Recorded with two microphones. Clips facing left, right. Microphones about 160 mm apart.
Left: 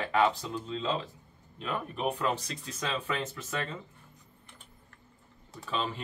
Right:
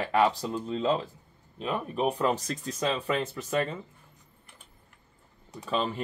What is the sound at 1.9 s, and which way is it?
Speech, 35° right (ahead or behind).